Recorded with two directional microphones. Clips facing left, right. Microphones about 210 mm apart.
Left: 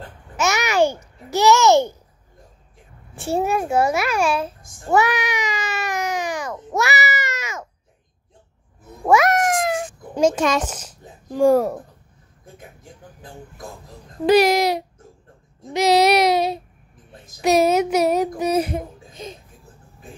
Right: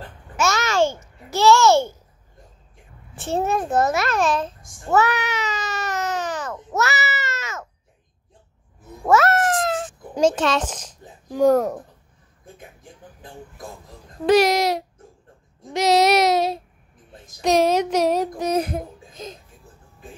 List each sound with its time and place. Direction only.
0.4 s babbling: 15° left (ahead or behind)
3.2 s babbling: 10° left (ahead or behind)
9.0 s meow: 15° left (ahead or behind)
10.1 s speech: 10° left (ahead or behind)
14.2 s child singing: centre (ahead or behind)
17.4 s speech: 5° left (ahead or behind)